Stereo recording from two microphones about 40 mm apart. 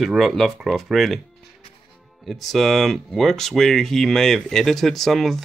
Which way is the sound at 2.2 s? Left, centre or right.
Centre.